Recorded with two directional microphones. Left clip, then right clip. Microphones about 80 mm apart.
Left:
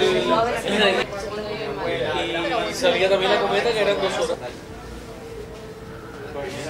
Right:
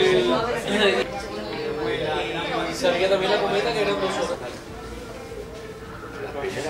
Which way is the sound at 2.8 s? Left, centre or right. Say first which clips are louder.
Left 2 dB; centre.